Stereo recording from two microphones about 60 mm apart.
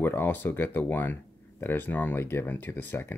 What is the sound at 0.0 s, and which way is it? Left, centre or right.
Speech, left.